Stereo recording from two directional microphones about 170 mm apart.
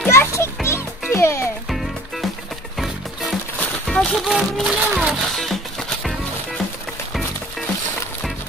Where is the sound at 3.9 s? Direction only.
Centre (ahead or behind).